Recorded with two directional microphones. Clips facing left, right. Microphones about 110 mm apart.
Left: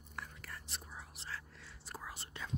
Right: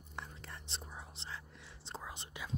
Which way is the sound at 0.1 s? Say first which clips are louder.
Right 1 dB; 25° right (ahead or behind).